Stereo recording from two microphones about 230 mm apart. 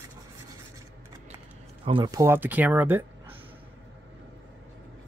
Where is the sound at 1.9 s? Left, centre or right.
Centre.